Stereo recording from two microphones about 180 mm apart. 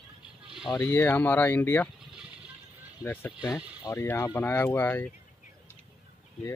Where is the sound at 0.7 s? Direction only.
15° left (ahead or behind).